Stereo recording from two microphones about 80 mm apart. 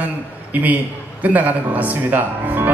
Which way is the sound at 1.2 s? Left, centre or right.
Centre.